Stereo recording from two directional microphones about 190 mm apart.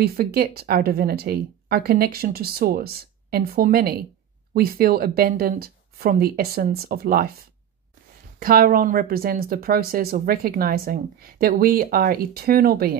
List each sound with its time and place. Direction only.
0.0 s speech: 55° right (ahead or behind)
8.4 s speech: 50° right (ahead or behind)